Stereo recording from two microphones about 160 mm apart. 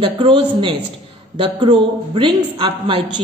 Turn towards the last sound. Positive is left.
turn(degrees=-30)  # may be behind; listen again after turning